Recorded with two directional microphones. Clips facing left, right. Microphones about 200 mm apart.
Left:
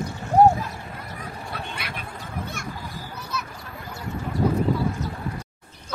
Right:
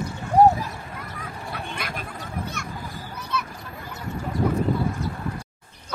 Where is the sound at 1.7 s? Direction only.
45° right (ahead or behind).